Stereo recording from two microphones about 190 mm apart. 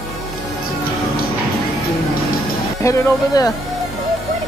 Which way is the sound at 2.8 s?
20° left (ahead or behind).